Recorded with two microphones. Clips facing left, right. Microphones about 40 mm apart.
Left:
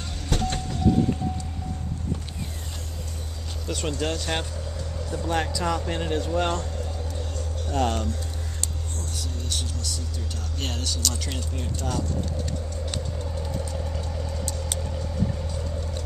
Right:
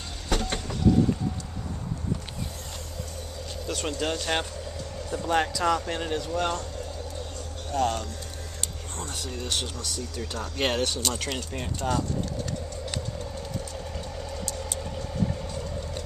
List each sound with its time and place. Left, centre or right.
0.3 s vehicle: right
3.6 s speech: centre
6.1 s speech: centre
7.8 s speech: centre
9.1 s speech: right
10.9 s speech: right
13.4 s vehicle: centre